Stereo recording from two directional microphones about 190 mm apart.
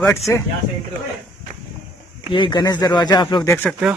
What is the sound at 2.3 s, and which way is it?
Speech, 25° left (ahead or behind).